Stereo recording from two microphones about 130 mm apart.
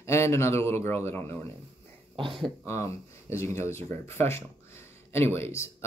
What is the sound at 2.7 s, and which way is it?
Speech, 20° left (ahead or behind).